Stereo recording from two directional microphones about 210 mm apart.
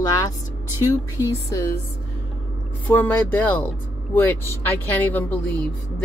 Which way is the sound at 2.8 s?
10° left (ahead or behind).